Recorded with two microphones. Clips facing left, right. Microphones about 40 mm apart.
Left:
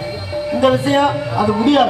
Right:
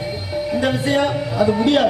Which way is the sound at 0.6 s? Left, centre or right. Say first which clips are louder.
Left 6 dB; centre.